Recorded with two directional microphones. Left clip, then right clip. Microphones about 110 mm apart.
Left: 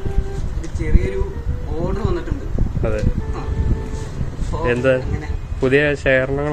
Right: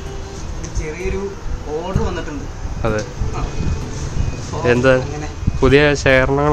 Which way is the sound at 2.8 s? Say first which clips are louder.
Right 3 dB; 30° right (ahead or behind).